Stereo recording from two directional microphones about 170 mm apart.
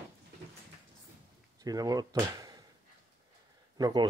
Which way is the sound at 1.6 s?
20° right (ahead or behind).